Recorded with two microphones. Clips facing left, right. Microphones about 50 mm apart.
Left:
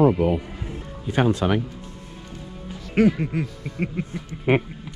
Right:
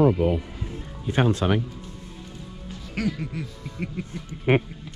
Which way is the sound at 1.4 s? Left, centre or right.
Left.